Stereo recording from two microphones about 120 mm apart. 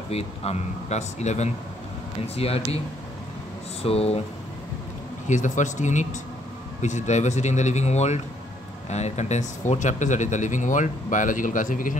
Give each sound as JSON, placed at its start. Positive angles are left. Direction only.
{"t": 0.1, "sound": "speech", "side_deg": 55}
{"t": 2.2, "sound": "speech", "side_deg": 55}
{"t": 3.8, "sound": "speech", "side_deg": 55}
{"t": 5.3, "sound": "speech", "side_deg": 90}